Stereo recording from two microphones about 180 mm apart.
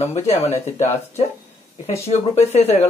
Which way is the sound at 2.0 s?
35° left (ahead or behind).